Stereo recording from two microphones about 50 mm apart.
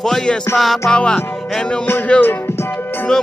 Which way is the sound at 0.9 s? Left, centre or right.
Centre.